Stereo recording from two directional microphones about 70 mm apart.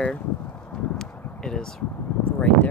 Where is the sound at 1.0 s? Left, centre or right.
Centre.